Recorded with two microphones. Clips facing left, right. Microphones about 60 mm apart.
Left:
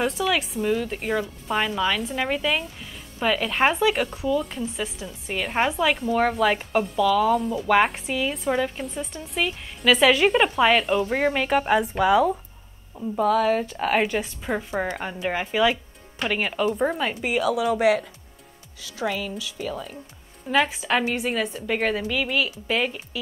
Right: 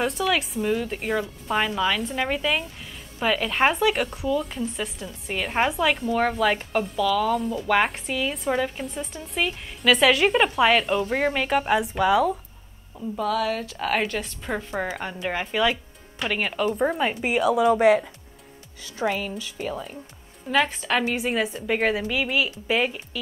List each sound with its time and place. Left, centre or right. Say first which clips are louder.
0.0 s a woman's voice: even; centre
13.1 s a woman's voice: left 5 dB; left; by 18.0 s centre
19.0 s speech: right 1 dB; centre
20.4 s a woman's voice: left 1 dB; centre